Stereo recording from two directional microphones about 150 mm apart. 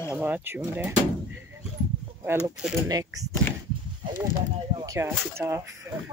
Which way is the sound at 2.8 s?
25° right (ahead or behind).